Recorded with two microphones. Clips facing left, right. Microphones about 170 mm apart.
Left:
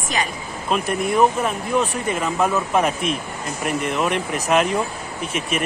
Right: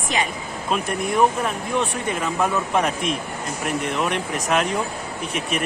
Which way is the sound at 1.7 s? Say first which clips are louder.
Left 3 dB; centre (ahead or behind).